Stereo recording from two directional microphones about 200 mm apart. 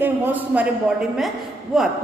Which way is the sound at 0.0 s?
10° right (ahead or behind).